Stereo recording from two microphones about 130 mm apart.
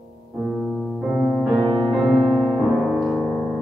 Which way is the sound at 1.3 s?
Centre (ahead or behind).